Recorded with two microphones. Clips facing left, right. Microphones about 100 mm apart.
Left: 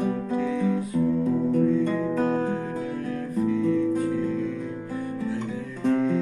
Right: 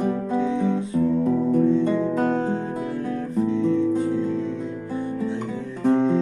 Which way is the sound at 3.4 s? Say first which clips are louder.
Right 2 dB; 25° right (ahead or behind).